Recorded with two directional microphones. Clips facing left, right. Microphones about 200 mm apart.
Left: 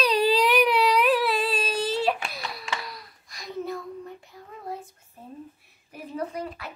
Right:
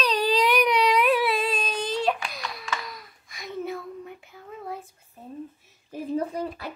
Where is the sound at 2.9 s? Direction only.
Centre (ahead or behind).